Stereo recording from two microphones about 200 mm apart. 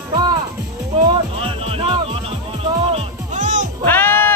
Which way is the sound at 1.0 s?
25° right (ahead or behind).